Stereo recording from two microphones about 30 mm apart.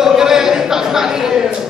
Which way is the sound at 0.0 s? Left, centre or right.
Centre.